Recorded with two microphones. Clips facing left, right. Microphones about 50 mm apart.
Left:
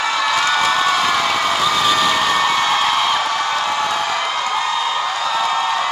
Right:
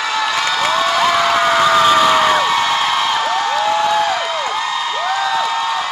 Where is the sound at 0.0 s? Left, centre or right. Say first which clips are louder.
Even; centre.